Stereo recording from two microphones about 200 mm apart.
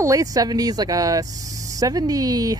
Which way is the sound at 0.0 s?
15° right (ahead or behind).